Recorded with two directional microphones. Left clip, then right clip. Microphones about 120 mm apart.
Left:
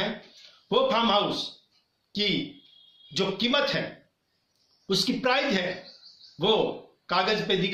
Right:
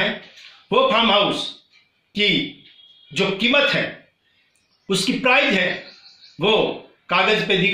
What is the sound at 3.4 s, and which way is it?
Speech, 15° left (ahead or behind).